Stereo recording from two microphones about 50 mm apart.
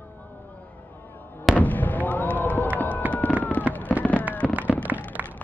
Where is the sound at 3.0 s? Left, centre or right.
Right.